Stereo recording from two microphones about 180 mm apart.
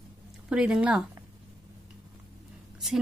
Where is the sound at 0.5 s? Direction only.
5° right (ahead or behind).